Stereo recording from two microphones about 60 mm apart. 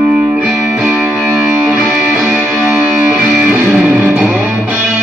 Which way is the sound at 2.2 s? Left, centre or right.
Centre.